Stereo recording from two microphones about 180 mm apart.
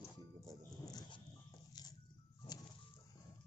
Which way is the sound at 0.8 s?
20° left (ahead or behind).